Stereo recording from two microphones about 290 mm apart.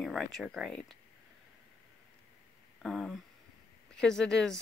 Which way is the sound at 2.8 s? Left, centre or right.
Centre.